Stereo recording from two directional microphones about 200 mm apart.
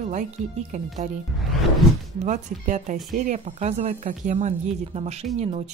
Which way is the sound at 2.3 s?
40° right (ahead or behind).